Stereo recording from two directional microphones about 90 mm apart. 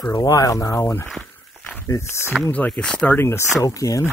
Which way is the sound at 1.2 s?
15° left (ahead or behind).